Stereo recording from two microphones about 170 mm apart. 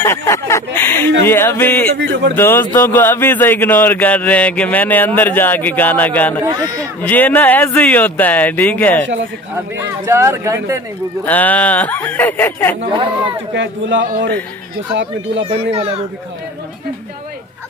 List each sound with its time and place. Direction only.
0.0 s speech: 15° left (ahead or behind)
2.0 s speech: 90° right
2.3 s speech: 15° left (ahead or behind)
6.4 s speech: 20° right (ahead or behind)
7.0 s speech: 10° left (ahead or behind)
9.8 s speech: 15° right (ahead or behind)
11.2 s speech: 10° left (ahead or behind)
12.9 s speech: 30° right (ahead or behind)
13.6 s speech: 90° right
15.4 s a child's voice: 35° right (ahead or behind)